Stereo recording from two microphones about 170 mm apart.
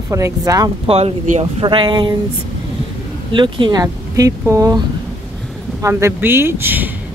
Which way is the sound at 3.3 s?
30° right (ahead or behind).